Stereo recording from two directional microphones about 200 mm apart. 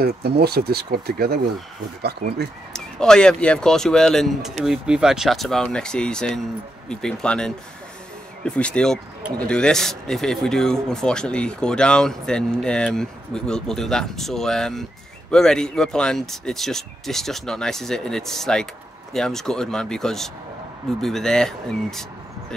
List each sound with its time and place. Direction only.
0.0 s speech: 55° right (ahead or behind)
2.7 s speech: 5° left (ahead or behind)